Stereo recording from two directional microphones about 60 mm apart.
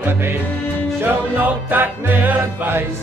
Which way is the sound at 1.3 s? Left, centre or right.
Right.